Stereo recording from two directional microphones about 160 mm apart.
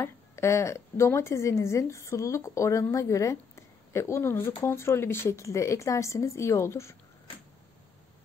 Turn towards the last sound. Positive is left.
turn(degrees=15)  # may be behind; listen again after turning